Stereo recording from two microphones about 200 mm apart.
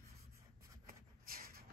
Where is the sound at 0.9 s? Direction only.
45° right (ahead or behind).